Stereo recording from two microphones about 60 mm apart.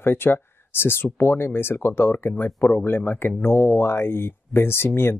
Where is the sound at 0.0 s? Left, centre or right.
Left.